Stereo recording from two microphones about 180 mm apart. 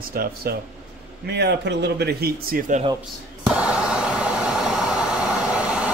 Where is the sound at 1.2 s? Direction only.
70° right (ahead or behind).